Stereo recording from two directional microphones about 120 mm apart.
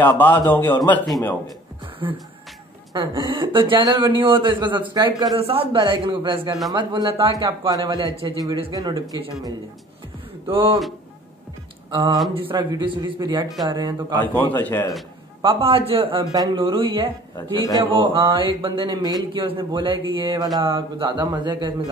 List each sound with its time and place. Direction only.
0.0 s a man's voice: 15° left (ahead or behind)
2.0 s a man's voice: 45° right (ahead or behind)
10.4 s a man's voice: 50° right (ahead or behind)
11.9 s a man's voice: 35° right (ahead or behind)
14.5 s a man's voice: 15° left (ahead or behind)
15.4 s a man's voice: 50° right (ahead or behind)
16.3 s a man's voice: 35° right (ahead or behind)